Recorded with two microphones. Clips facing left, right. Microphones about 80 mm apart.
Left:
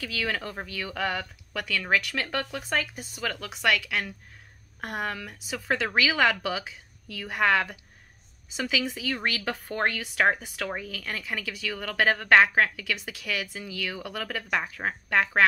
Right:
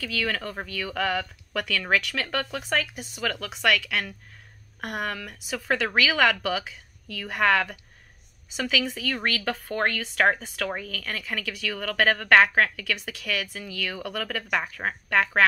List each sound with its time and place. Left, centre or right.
0.0 s a woman's voice: centre
0.9 s a woman's voice: centre